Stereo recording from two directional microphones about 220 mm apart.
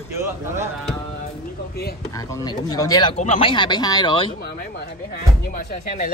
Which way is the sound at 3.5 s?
20° left (ahead or behind).